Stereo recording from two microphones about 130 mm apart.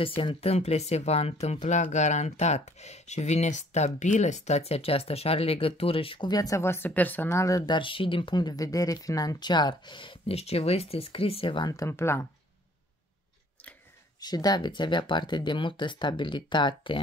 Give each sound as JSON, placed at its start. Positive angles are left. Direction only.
{"t": 0.2, "sound": "speech", "side_deg": 45}
{"t": 11.6, "sound": "speech", "side_deg": 25}
{"t": 14.2, "sound": "speech", "side_deg": 30}